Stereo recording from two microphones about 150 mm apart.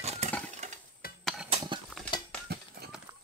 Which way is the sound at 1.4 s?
35° right (ahead or behind).